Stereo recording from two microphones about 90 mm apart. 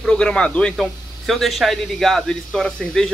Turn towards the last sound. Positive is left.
turn(degrees=5)  # may be behind; listen again after turning